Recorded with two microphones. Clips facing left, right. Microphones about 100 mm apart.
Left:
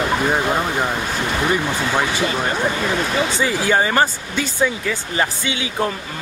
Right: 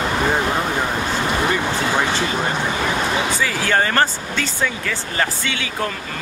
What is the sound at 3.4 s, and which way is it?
Speech, 15° left (ahead or behind).